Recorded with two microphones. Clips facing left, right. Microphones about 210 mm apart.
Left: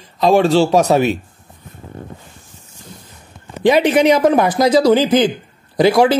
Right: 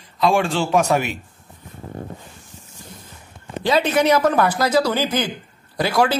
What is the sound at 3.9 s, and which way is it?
A woman's voice, 15° left (ahead or behind).